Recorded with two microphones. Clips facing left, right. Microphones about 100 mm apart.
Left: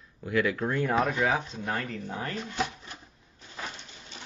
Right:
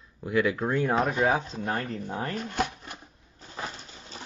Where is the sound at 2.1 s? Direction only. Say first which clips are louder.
Right 3 dB; 45° right (ahead or behind).